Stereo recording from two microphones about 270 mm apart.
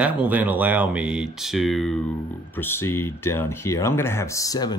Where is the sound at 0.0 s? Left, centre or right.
Centre.